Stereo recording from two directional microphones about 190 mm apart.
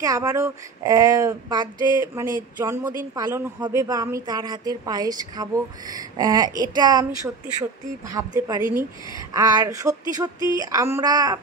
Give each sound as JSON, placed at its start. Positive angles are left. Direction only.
{"t": 0.0, "sound": "a woman's voice", "side_deg": -20}